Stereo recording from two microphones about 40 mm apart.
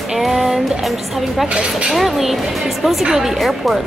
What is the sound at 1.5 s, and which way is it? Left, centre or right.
Speech, right.